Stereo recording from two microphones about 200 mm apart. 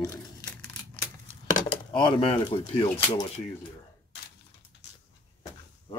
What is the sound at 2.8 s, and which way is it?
Speech, 15° left (ahead or behind).